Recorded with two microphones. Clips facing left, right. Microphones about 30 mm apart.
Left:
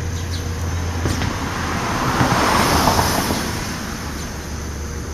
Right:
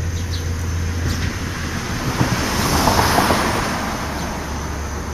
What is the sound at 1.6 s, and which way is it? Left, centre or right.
Vehicle, left.